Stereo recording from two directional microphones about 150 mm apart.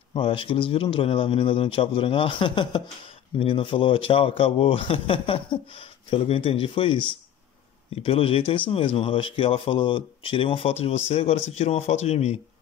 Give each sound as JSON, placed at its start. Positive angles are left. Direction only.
{"t": 0.1, "sound": "speech", "side_deg": 35}